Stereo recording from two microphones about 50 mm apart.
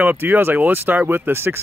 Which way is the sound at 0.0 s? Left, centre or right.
Right.